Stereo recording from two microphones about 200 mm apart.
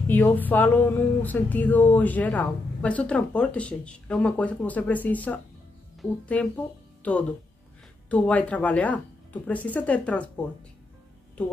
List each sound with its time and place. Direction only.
0.1 s a woman's voice: 10° left (ahead or behind)